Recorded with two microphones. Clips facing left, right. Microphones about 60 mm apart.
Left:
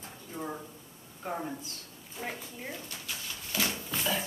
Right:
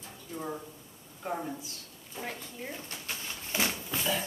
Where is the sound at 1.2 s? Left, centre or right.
Centre.